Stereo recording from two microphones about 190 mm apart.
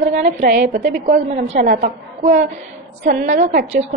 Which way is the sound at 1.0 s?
35° right (ahead or behind).